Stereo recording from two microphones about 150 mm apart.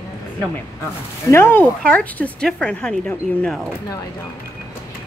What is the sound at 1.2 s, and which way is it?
Speech, 15° left (ahead or behind).